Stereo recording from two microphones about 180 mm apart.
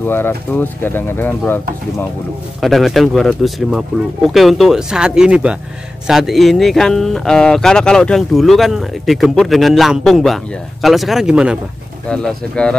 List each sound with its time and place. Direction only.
0.0 s speech: 10° left (ahead or behind)
2.6 s speech: centre (ahead or behind)